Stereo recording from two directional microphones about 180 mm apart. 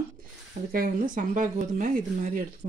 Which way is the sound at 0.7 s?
50° right (ahead or behind).